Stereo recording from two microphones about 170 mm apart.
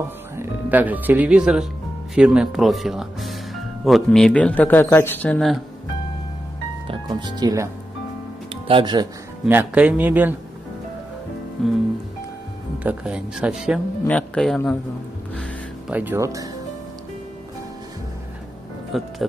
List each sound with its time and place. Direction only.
0.4 s speech: 10° right (ahead or behind)
6.9 s speech: 25° right (ahead or behind)
9.5 s speech: 10° right (ahead or behind)
11.6 s speech: 5° left (ahead or behind)
14.0 s speech: 5° left (ahead or behind)
15.9 s speech: 10° right (ahead or behind)
18.9 s speech: centre (ahead or behind)